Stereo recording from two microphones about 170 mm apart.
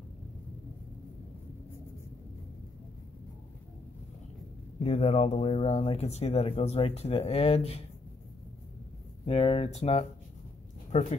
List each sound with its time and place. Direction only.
4.8 s speech: 40° left (ahead or behind)
9.2 s speech: 35° left (ahead or behind)